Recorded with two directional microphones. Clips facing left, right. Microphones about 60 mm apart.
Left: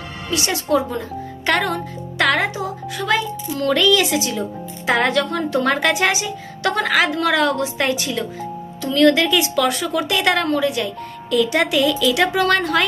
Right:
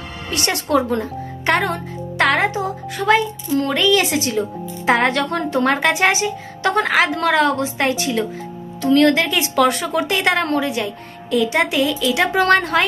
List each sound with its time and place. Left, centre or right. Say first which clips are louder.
0.3 s a woman's voice: even; right
1.4 s speech: right 1 dB; right